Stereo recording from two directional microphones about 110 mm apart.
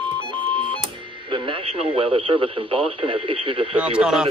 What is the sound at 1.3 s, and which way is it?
Speech, 55° right (ahead or behind).